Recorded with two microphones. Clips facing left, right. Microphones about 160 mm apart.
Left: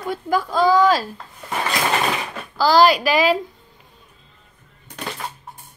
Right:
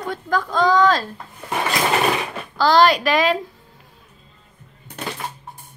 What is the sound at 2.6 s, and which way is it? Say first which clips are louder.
Speech: left 1 dB; centre (ahead or behind).